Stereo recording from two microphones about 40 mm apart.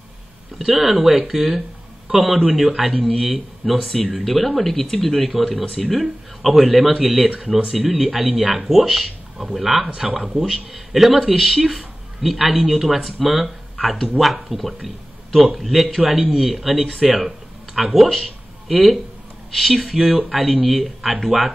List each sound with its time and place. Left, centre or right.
0.6 s speech: centre
6.9 s speech: centre
8.4 s speech: centre
8.6 s speech: centre